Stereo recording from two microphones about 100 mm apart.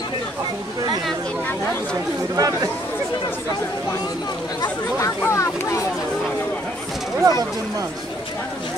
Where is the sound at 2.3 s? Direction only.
40° right (ahead or behind).